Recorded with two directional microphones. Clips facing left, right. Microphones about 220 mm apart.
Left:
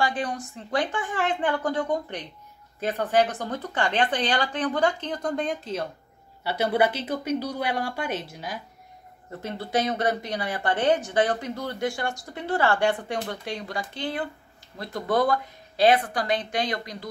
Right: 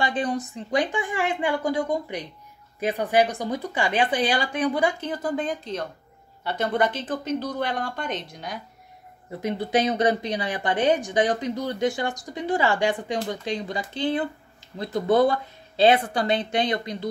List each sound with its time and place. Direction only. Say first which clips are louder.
0.0 s speech: right 2 dB; 20° right (ahead or behind); by 8.5 s 5° left (ahead or behind)
9.3 s speech: right 4 dB; 15° right (ahead or behind)